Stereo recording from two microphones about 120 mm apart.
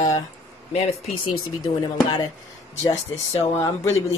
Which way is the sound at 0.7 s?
60° left (ahead or behind).